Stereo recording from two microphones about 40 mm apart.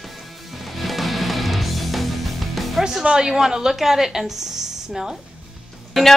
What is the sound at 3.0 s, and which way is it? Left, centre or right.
Speech, centre.